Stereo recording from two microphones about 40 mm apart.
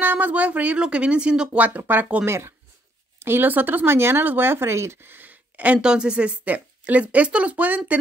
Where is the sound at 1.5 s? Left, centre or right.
Right.